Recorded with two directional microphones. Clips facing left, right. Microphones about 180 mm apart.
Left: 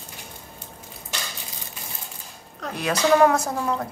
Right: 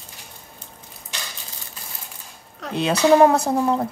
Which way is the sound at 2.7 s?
25° right (ahead or behind).